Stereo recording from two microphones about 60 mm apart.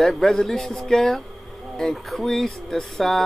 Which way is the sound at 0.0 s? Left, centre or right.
Centre.